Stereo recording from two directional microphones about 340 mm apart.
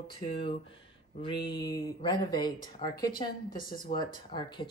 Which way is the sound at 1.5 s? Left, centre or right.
Centre.